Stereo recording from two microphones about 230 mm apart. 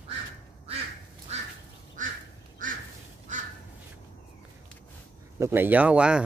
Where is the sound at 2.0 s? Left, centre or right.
Right.